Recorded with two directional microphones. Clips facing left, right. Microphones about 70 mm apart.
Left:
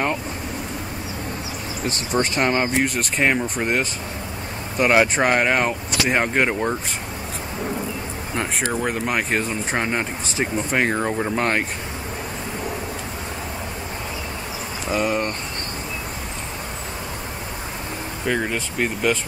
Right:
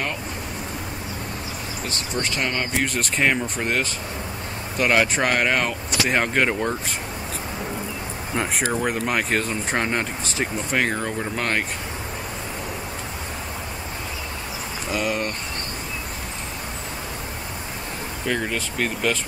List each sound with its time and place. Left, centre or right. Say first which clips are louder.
1.9 s speech: left 6 dB; left
2.9 s speech: left 1 dB; centre
3.5 s speech: left 2 dB; centre
8.4 s speech: even; centre
14.9 s speech: left 3 dB; centre
18.2 s speech: left 2 dB; centre